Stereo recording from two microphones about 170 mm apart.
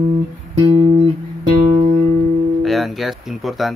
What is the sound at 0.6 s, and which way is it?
Music, 30° right (ahead or behind).